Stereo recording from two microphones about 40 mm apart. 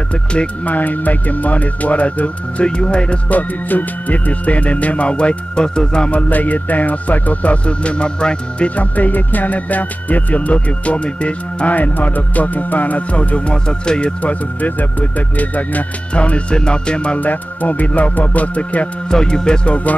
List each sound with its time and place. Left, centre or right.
0.7 s music: left
3.3 s music: left
4.3 s music: left
6.2 s music: left
8.7 s music: left
11.7 s music: left
13.7 s music: left
14.2 s music: left
17.2 s music: left
19.0 s music: centre; by 20.0 s left